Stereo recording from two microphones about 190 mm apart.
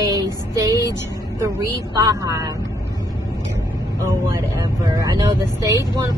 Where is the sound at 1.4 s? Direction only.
20° right (ahead or behind).